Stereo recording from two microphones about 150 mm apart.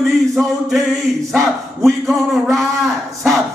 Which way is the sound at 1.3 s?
Centre (ahead or behind).